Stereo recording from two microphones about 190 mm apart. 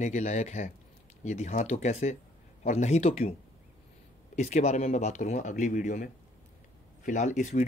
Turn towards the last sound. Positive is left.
turn(degrees=40)  # may be behind; listen again after turning